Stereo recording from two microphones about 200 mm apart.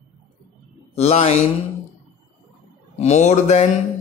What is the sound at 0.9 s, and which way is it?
Speech, 30° left (ahead or behind).